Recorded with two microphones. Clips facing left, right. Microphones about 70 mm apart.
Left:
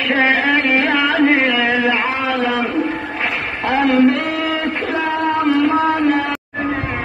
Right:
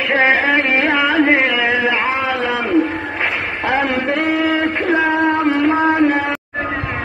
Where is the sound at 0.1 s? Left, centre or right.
Centre.